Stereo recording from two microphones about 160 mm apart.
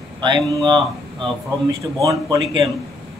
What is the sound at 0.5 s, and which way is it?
Speech, centre (ahead or behind).